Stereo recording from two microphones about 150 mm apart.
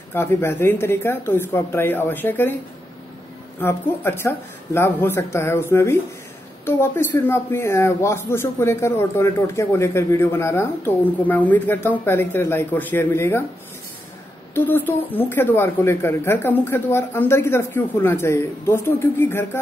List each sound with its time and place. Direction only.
0.1 s speech: 15° left (ahead or behind)
3.6 s speech: 15° left (ahead or behind)
14.5 s speech: 15° left (ahead or behind)